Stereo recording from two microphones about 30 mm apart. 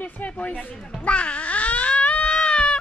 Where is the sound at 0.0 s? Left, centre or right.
Left.